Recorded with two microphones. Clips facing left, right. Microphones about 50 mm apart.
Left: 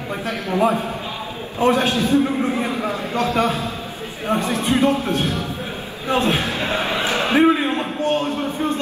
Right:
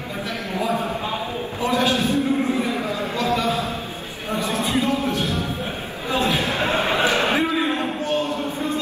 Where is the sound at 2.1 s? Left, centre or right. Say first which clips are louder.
Left 2 dB; left.